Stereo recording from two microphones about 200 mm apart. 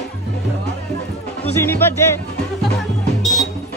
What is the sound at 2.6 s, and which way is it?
Music, centre (ahead or behind).